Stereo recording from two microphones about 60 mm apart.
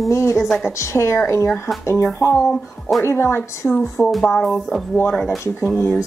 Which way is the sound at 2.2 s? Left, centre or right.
Left.